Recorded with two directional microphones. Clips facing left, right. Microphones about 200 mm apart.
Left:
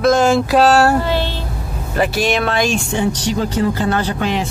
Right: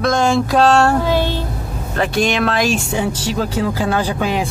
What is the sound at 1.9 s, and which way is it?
Speech, 5° left (ahead or behind).